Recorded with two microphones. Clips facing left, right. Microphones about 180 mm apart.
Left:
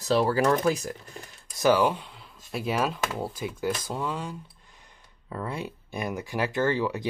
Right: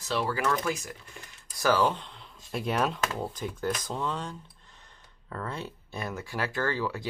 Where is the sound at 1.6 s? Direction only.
15° left (ahead or behind).